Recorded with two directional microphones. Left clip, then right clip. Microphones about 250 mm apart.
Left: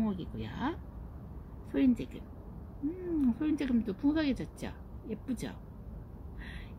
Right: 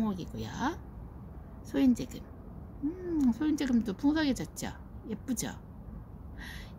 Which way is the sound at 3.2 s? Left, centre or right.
Right.